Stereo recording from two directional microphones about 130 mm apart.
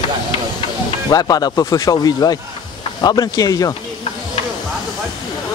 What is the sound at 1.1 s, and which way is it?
Speech, 30° left (ahead or behind).